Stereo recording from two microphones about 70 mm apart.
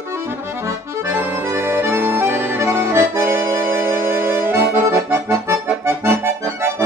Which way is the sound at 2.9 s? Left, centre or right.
Right.